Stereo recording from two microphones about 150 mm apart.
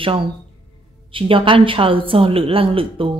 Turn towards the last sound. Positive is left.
turn(degrees=-35)  # may be behind; listen again after turning